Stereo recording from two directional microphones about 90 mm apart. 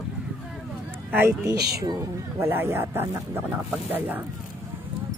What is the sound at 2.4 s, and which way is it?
A woman's voice, 25° right (ahead or behind).